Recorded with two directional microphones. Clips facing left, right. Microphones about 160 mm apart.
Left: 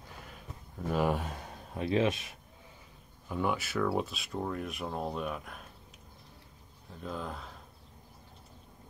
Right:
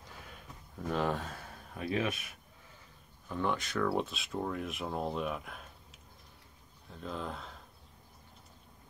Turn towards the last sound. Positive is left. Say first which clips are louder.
# left 1 dB
turn(degrees=0)  # may be behind; listen again after turning